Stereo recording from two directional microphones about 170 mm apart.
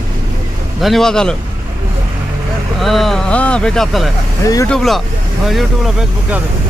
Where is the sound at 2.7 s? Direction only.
Centre (ahead or behind).